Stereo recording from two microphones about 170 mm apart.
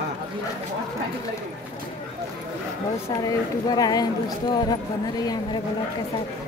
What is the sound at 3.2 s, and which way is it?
Speech, 20° left (ahead or behind).